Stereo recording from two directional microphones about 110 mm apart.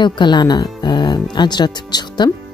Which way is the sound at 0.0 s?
45° left (ahead or behind).